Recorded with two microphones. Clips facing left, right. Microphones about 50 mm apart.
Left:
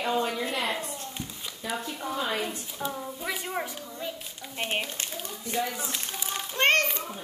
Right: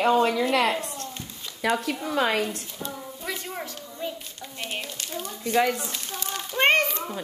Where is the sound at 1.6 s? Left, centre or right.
Right.